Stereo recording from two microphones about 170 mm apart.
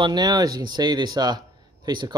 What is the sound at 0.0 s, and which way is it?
Speech, 25° right (ahead or behind).